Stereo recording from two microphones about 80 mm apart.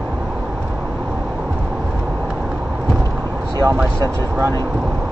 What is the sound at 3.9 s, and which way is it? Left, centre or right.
Speech, right.